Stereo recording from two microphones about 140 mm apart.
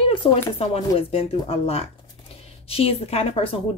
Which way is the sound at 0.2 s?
40° left (ahead or behind).